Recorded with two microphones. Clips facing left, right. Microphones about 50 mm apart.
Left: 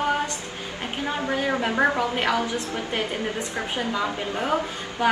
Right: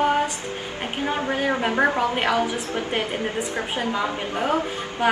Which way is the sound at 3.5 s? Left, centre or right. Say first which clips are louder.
Right 2 dB; right.